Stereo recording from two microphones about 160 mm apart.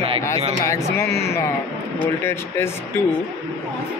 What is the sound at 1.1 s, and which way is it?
Speech, 90° left.